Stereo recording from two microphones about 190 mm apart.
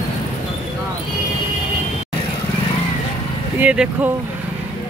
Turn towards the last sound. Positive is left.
turn(degrees=-5)  # may be behind; listen again after turning